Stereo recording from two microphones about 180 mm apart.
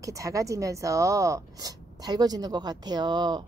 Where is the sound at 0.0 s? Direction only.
20° right (ahead or behind).